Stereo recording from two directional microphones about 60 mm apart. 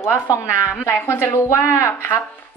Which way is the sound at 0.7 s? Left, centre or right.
Left.